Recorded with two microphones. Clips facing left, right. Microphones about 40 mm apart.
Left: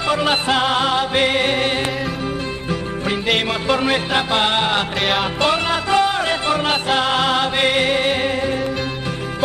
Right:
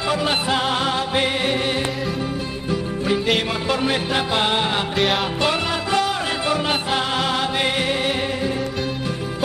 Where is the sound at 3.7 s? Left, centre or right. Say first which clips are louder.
Left 4 dB; left.